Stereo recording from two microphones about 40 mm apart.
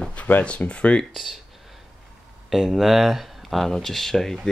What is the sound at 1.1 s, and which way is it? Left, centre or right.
Speech, centre.